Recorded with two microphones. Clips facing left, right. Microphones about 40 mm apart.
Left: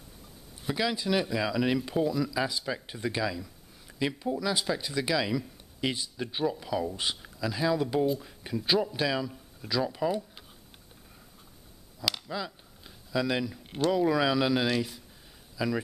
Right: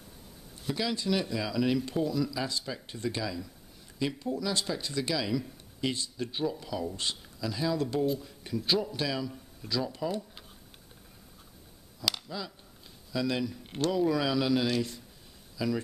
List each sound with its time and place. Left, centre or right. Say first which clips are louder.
0.7 s speech: left 2 dB; centre
12.3 s a man's voice: left 4 dB; centre